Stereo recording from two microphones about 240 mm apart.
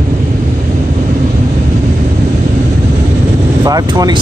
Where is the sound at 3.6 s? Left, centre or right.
Centre.